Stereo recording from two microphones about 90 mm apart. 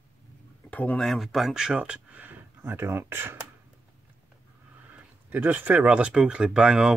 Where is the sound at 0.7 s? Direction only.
15° left (ahead or behind).